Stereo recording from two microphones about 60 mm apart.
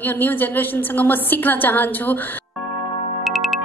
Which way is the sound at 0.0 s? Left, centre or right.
Left.